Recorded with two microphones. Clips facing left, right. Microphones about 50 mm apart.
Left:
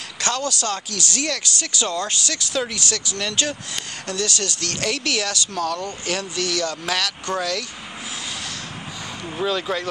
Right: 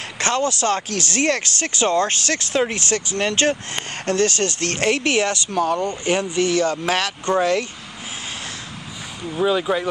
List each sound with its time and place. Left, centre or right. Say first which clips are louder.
0.2 s speech: right 4 dB; right
9.4 s speech: right 4 dB; centre